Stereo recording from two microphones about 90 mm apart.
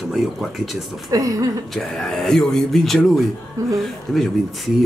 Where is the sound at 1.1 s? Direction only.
40° right (ahead or behind).